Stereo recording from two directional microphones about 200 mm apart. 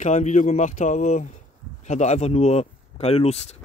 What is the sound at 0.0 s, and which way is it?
Speech, 35° left (ahead or behind).